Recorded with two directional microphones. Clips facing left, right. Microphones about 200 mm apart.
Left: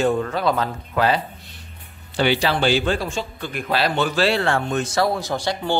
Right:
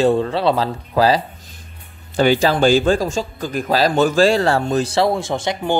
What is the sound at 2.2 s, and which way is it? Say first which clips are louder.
A man's voice: right 5 dB; 45° right (ahead or behind).